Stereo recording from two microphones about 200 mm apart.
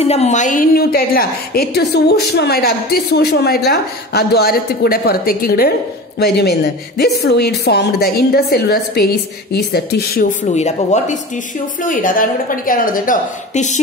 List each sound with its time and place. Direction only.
0.0 s a woman's voice: 30° left (ahead or behind); by 10.2 s 50° left (ahead or behind)
10.4 s a woman's voice: 35° left (ahead or behind)